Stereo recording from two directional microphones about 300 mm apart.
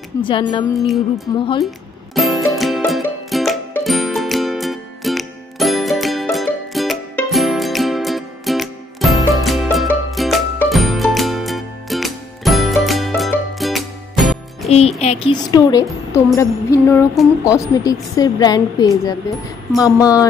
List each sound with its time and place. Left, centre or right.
0.2 s a woman's voice: centre
0.7 s music: centre
14.7 s a woman's voice: left